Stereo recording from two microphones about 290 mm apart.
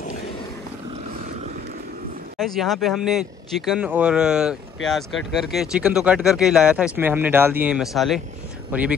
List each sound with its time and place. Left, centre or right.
1.0 s vehicle: centre
2.3 s speech: centre